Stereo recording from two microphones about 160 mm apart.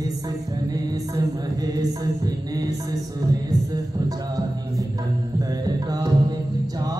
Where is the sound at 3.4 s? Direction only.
25° right (ahead or behind).